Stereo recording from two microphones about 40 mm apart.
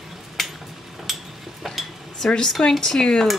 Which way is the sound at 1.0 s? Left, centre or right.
Centre.